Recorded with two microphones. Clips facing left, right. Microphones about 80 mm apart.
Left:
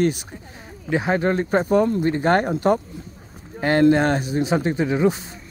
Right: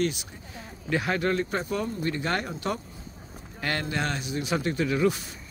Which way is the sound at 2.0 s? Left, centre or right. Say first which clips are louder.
Left 10 dB; left.